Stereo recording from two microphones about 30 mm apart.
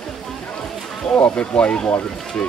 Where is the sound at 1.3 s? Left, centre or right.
Left.